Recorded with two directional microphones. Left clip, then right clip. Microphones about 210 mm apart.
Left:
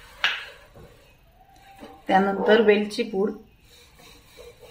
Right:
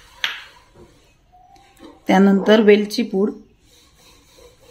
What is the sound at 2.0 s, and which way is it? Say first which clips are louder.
Speech: right 4 dB; 45° right (ahead or behind).